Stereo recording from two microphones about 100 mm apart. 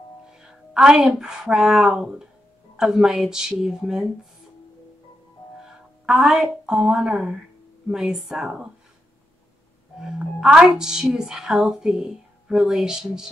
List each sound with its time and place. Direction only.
0.3 s a woman's voice: 5° right (ahead or behind)
6.0 s a woman's voice: 5° right (ahead or behind)
9.9 s speech: 5° right (ahead or behind)